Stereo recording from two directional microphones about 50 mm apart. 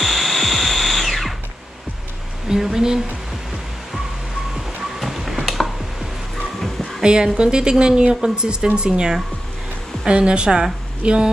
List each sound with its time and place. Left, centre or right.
0.0 s drill: centre
2.4 s speech: centre
4.6 s music: centre
7.0 s a woman's voice: centre